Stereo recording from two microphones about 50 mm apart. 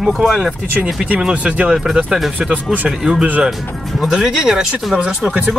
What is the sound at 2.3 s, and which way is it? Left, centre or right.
Speech, right.